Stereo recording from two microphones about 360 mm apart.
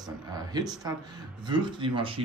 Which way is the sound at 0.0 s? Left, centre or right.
Centre.